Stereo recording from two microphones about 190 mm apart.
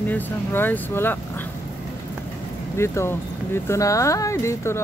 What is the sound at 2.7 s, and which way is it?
Speech, 15° left (ahead or behind).